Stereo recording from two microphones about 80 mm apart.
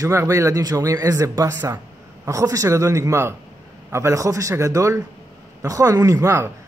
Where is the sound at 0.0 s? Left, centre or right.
Right.